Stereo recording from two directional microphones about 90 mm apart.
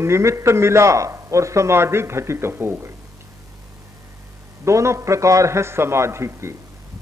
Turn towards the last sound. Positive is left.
turn(degrees=-30)  # may be behind; listen again after turning